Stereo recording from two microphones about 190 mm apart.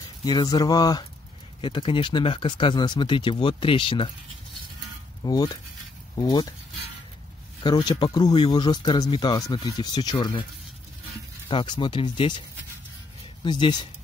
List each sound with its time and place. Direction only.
0.2 s speech: 20° left (ahead or behind)
5.2 s speech: 20° left (ahead or behind)
7.6 s speech: 20° left (ahead or behind)
11.4 s speech: 25° left (ahead or behind)